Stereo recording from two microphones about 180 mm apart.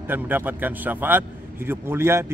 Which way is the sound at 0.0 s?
10° right (ahead or behind).